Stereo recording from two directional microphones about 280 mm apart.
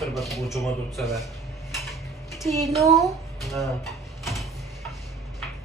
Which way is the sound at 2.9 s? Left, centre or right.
Centre.